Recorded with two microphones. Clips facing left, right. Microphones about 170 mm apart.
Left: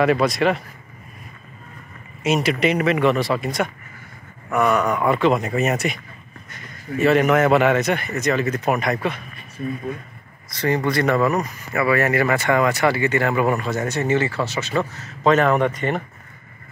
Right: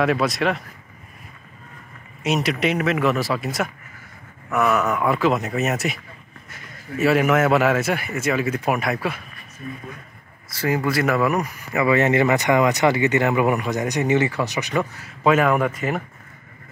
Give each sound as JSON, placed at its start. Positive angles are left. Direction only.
{"t": 0.0, "sound": "a man's voice", "side_deg": 0}
{"t": 2.2, "sound": "a man's voice", "side_deg": 0}
{"t": 10.5, "sound": "speech", "side_deg": -5}